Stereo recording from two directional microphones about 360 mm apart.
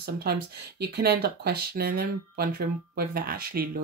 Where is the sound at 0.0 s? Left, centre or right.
Right.